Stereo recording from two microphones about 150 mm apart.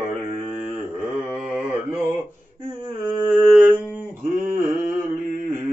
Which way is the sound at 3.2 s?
15° right (ahead or behind).